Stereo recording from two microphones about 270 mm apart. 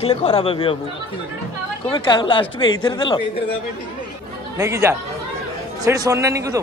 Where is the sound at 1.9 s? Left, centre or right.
Centre.